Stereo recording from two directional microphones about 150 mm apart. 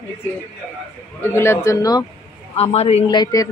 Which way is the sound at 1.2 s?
15° left (ahead or behind).